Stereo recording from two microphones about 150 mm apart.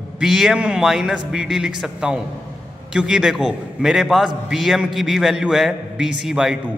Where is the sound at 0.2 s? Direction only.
5° right (ahead or behind).